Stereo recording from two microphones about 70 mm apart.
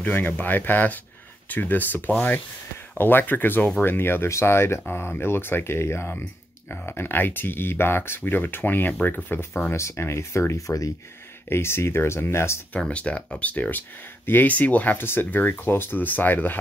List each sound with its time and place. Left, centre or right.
0.0 s speech: left
9.7 s speech: left
11.4 s speech: left
12.7 s speech: centre